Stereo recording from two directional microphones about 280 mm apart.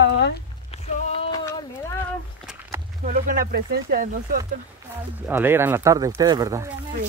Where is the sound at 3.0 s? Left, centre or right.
Right.